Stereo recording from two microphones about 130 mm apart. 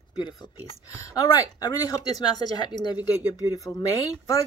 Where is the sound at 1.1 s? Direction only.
30° left (ahead or behind).